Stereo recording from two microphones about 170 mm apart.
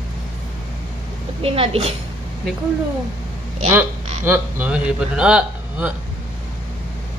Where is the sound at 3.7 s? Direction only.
15° right (ahead or behind).